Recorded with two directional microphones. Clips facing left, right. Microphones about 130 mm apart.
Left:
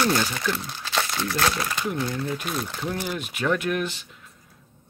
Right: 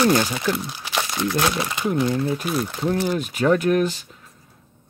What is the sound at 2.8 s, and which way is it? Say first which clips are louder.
Speech: right 7 dB; 35° right (ahead or behind).